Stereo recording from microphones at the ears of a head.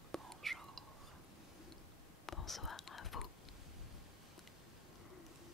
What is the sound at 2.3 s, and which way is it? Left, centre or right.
Whispering, left.